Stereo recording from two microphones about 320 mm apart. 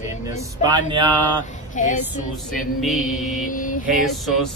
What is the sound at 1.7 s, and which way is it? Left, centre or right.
Mantra, left.